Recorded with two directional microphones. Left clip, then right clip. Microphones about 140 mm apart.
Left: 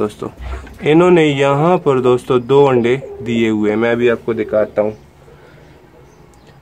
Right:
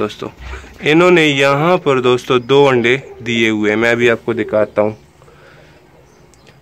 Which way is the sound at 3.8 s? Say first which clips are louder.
Right 2 dB; 10° right (ahead or behind).